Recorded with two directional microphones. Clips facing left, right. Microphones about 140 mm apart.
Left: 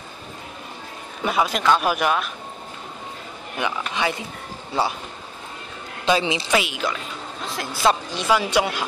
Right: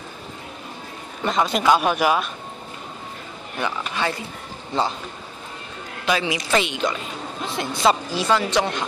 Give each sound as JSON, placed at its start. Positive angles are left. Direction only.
{"t": 1.2, "sound": "a man's voice", "side_deg": 5}
{"t": 3.5, "sound": "speech", "side_deg": 15}
{"t": 6.0, "sound": "a woman's voice", "side_deg": 25}
{"t": 6.5, "sound": "a man's voice", "side_deg": 5}
{"t": 8.3, "sound": "speech", "side_deg": 10}